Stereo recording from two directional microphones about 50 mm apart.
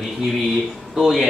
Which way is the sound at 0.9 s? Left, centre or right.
Centre.